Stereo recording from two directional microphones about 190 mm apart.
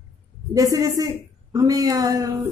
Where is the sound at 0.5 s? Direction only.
20° right (ahead or behind).